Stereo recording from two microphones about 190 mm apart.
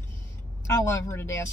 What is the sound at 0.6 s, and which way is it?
Speech, 15° left (ahead or behind).